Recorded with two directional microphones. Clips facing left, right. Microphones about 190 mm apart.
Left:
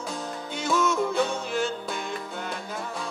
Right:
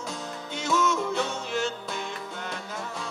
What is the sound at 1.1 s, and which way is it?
Music, 10° left (ahead or behind).